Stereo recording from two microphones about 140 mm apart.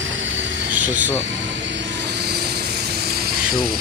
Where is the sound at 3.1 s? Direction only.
90° right.